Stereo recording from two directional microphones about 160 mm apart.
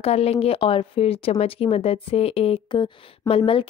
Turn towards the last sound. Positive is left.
turn(degrees=35)  # may be behind; listen again after turning